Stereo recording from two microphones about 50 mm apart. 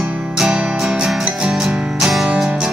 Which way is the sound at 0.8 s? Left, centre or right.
Centre.